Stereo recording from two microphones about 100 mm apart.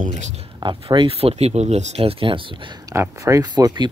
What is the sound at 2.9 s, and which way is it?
Speech, 30° right (ahead or behind).